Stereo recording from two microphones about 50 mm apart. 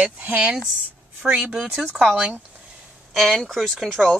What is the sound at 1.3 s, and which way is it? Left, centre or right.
Speech, centre.